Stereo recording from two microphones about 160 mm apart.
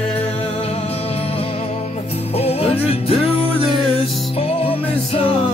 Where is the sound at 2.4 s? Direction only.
40° left (ahead or behind).